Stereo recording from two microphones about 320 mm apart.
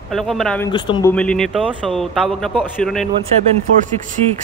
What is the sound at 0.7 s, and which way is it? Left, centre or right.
Speech, centre.